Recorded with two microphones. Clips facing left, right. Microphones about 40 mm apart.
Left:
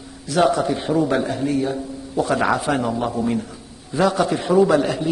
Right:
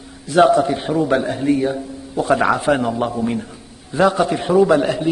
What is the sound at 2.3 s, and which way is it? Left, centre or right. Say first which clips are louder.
A man's voice: right 4 dB; right.